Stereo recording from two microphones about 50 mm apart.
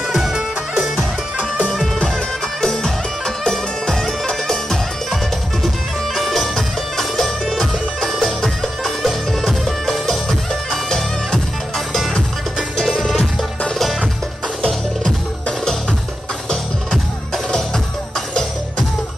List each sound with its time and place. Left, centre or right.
0.1 s music: centre
2.6 s music: centre
13.0 s music: centre